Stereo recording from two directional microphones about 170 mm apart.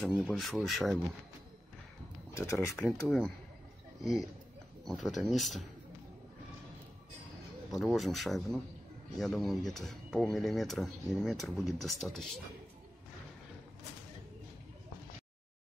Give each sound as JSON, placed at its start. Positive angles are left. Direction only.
{"t": 0.0, "sound": "speech", "side_deg": 0}
{"t": 2.3, "sound": "speech", "side_deg": 15}
{"t": 3.1, "sound": "speech", "side_deg": 5}
{"t": 7.7, "sound": "speech", "side_deg": 0}